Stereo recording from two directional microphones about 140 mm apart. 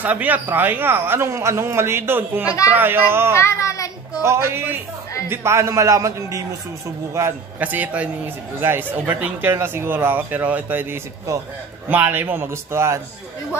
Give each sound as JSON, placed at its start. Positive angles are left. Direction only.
{"t": 0.0, "sound": "speech", "side_deg": -10}
{"t": 3.3, "sound": "a sound", "side_deg": 20}
{"t": 4.2, "sound": "a man's voice", "side_deg": -20}